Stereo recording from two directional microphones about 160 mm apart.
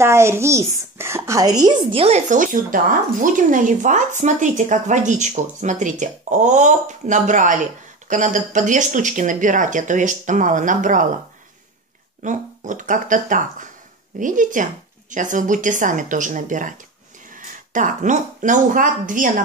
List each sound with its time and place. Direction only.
0.0 s a child's voice: 15° right (ahead or behind)
2.0 s speech: 50° right (ahead or behind)
12.2 s speech: 50° right (ahead or behind)